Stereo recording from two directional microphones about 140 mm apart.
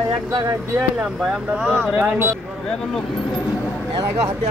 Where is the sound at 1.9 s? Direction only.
15° right (ahead or behind).